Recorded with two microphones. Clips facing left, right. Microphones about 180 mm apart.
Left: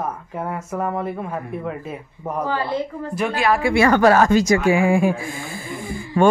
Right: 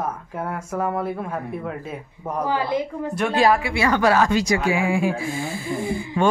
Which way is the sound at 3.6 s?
50° left (ahead or behind).